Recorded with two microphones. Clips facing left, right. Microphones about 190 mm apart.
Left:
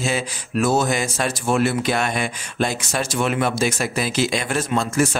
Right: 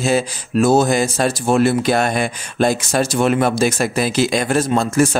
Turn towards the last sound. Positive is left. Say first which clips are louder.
# right 4 dB
turn(degrees=-40)  # may be behind; listen again after turning